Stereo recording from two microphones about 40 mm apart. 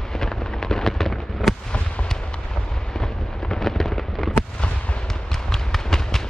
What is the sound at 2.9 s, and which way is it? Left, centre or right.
Fireworks, centre.